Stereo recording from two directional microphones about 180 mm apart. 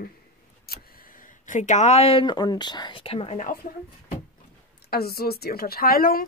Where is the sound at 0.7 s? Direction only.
60° left (ahead or behind).